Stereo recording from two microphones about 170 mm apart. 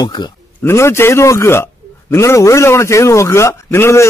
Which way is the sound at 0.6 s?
15° left (ahead or behind).